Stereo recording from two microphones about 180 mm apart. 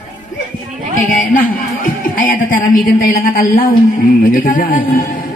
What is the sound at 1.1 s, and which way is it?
A man's voice, 50° left (ahead or behind).